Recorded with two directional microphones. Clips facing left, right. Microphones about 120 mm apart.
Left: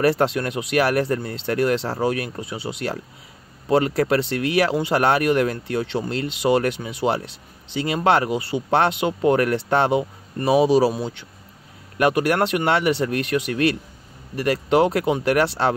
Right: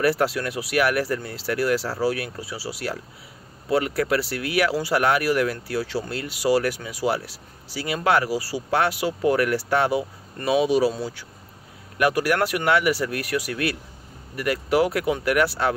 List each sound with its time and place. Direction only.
0.0 s speech: 25° left (ahead or behind)
10.9 s speech: 20° left (ahead or behind)